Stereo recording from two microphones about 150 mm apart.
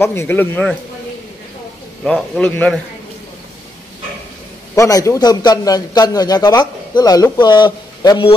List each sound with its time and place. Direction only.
0.0 s a man's voice: 15° left (ahead or behind)
2.0 s a man's voice: 5° left (ahead or behind)
4.7 s a man's voice: 20° left (ahead or behind)